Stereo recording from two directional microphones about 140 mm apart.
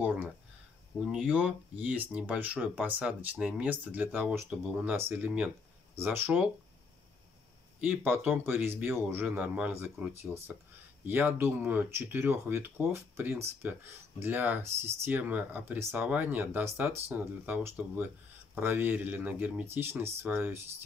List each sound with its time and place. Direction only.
0.0 s speech: 10° right (ahead or behind)
4.9 s speech: 15° right (ahead or behind)
7.8 s speech: 15° right (ahead or behind)